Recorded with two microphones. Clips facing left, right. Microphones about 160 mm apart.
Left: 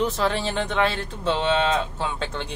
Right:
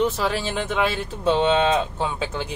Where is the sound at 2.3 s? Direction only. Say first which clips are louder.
Right 3 dB; 5° right (ahead or behind).